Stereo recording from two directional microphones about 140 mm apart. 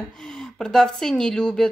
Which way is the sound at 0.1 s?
5° left (ahead or behind).